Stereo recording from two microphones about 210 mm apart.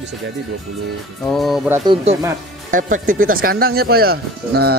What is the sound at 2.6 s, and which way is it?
Speech, 40° right (ahead or behind).